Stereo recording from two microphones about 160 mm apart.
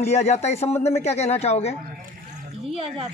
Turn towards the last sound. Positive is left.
turn(degrees=-40)  # may be behind; listen again after turning